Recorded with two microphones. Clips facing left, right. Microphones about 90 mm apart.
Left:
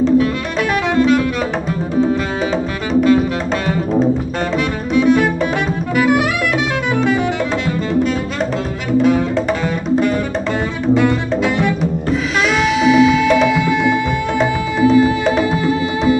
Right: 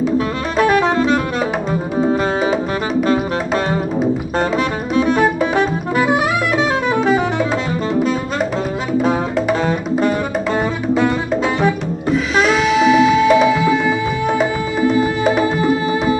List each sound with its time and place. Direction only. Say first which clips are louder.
0.6 s music: right 2 dB; 35° right (ahead or behind)
5.6 s music: right 1 dB; 35° right (ahead or behind)
11.8 s music: left 1 dB; centre (ahead or behind)